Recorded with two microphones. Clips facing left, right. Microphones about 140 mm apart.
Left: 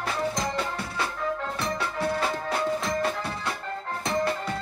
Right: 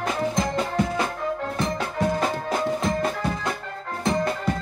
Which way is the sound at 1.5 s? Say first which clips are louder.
Right 3 dB; 45° right (ahead or behind).